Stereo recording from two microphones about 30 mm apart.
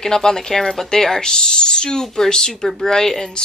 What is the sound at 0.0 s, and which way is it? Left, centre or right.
A woman's voice, centre.